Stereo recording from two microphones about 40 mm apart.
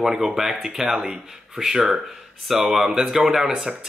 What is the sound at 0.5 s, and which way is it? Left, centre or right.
Speech, right.